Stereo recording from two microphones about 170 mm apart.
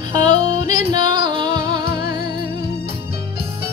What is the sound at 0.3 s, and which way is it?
Music, 30° right (ahead or behind).